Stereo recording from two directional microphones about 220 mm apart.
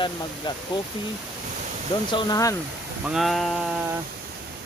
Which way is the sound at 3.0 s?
Centre (ahead or behind).